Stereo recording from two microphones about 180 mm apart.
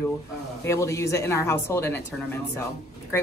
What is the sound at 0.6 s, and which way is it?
Speech, 15° left (ahead or behind).